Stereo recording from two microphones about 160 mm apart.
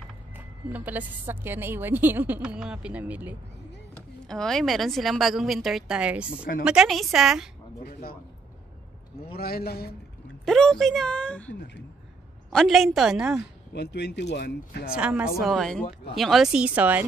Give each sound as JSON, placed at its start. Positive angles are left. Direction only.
{"t": 0.4, "sound": "a woman's voice", "side_deg": -10}
{"t": 4.3, "sound": "speech", "side_deg": 5}
{"t": 7.8, "sound": "a man's voice", "side_deg": 70}
{"t": 9.3, "sound": "a man's voice", "side_deg": 75}
{"t": 10.4, "sound": "speech", "side_deg": 5}
{"t": 13.7, "sound": "speech", "side_deg": 90}
{"t": 15.0, "sound": "a woman's voice", "side_deg": -5}